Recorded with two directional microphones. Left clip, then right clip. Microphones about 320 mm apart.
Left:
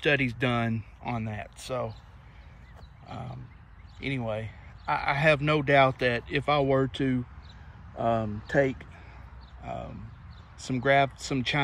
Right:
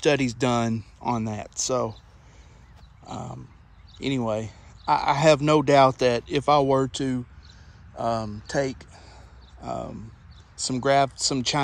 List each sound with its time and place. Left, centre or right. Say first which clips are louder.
0.0 s speech: right 3 dB; centre
3.1 s a sound: right 5 dB; centre
4.0 s speech: right 6 dB; centre
10.6 s speech: right 3 dB; centre